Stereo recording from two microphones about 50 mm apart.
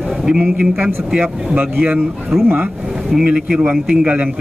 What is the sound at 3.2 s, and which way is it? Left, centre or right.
Speech, centre.